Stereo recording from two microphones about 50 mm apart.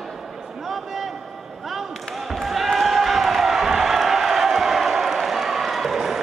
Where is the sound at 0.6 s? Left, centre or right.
Centre.